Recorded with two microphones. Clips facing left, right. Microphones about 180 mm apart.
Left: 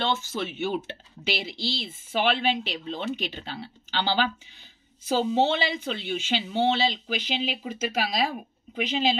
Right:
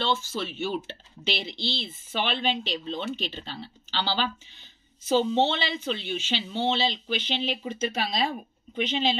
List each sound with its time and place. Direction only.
0.0 s speech: 20° left (ahead or behind)